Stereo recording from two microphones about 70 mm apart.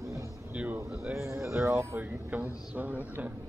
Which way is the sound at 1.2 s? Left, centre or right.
Right.